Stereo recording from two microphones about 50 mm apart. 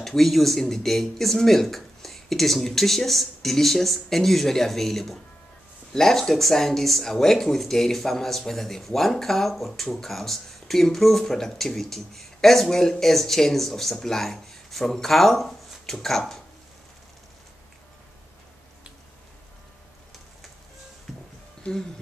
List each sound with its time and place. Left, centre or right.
0.0 s speech: centre
21.1 s music: centre